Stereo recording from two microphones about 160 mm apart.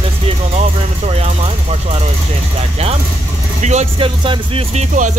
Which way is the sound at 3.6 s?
40° right (ahead or behind).